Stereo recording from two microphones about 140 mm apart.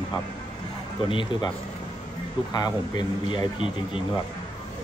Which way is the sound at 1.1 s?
35° left (ahead or behind).